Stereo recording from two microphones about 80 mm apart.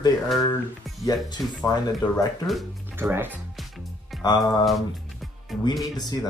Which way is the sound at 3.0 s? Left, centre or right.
Right.